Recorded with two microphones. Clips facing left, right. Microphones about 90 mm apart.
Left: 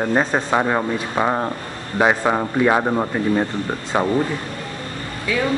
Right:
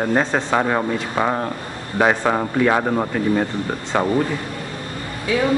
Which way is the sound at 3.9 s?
20° left (ahead or behind).